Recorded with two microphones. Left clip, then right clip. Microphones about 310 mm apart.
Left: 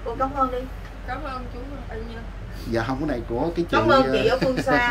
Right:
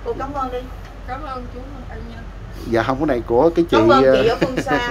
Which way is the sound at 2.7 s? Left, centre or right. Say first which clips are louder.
Right 7 dB; centre.